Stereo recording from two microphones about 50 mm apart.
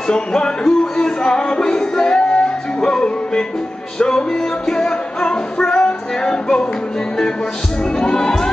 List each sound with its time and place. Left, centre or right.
0.1 s music: centre
8.0 s music: centre